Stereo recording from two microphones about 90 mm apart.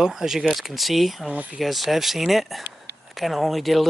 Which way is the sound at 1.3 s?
15° right (ahead or behind).